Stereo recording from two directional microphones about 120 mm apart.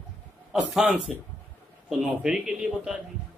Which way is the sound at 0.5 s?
5° right (ahead or behind).